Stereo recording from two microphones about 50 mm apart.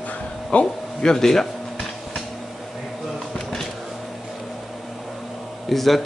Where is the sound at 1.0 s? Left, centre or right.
Centre.